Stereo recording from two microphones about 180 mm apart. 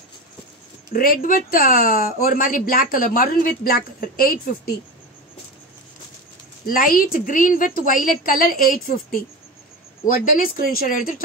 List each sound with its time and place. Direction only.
0.9 s speech: 50° left (ahead or behind)
6.6 s speech: 50° left (ahead or behind)
10.4 s speech: 55° left (ahead or behind)